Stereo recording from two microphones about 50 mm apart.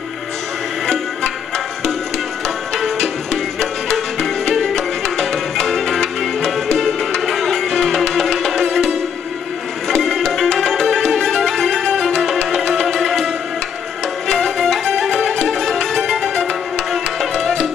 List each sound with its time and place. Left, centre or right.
2.4 s music: centre